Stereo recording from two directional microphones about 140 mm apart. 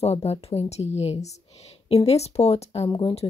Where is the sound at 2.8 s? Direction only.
35° left (ahead or behind).